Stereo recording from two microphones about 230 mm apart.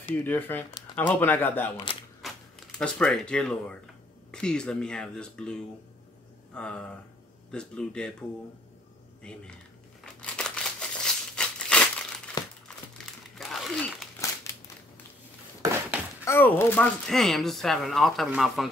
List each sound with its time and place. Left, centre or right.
0.1 s speech: centre
2.2 s a sound: centre
2.8 s speech: centre
9.2 s speech: centre
10.2 s a sound: centre
12.4 s crumpling: centre
13.4 s crumpling: centre
16.3 s speech: centre